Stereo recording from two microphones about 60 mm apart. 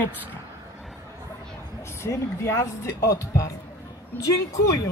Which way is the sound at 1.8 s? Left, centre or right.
Left.